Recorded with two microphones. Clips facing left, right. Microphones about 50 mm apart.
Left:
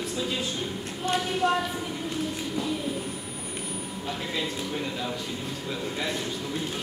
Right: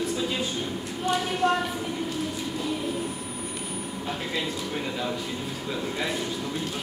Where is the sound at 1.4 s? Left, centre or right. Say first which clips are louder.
Right 1 dB; right.